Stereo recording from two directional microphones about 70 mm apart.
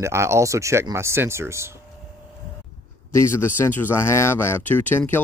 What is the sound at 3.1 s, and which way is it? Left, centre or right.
A man's voice, left.